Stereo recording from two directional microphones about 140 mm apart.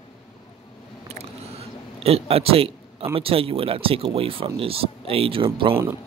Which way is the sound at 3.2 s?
40° right (ahead or behind).